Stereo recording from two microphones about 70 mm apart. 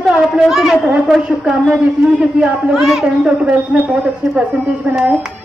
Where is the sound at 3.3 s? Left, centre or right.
Right.